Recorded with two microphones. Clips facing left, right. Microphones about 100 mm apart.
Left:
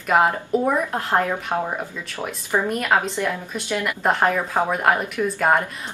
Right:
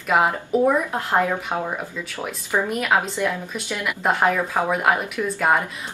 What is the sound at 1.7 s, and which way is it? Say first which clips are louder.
Speech: even; 15° left (ahead or behind).